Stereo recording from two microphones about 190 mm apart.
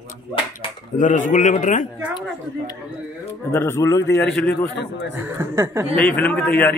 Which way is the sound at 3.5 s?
15° left (ahead or behind).